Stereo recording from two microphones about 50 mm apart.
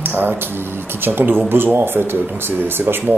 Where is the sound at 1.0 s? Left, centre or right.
Right.